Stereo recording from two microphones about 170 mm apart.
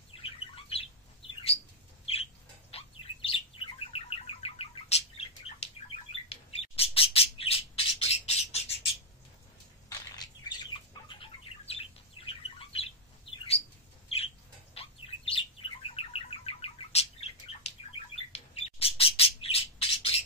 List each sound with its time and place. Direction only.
0.1 s bird: 35° left (ahead or behind)
2.7 s bird: 30° left (ahead or behind)
9.8 s bird: 20° left (ahead or behind)